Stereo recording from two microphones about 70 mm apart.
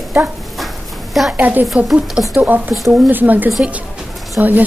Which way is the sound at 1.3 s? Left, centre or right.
Right.